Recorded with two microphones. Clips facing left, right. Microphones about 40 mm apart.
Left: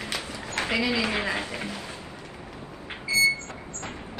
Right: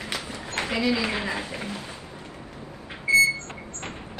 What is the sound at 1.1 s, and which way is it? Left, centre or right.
Speech, left.